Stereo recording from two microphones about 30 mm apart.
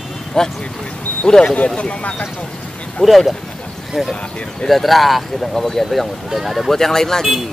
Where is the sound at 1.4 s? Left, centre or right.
Left.